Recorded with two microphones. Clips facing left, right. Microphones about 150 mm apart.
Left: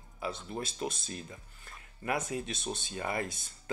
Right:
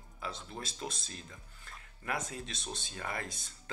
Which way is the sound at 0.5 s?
55° left (ahead or behind).